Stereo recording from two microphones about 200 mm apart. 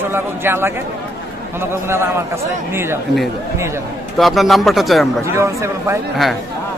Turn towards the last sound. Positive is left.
turn(degrees=-15)  # may be behind; listen again after turning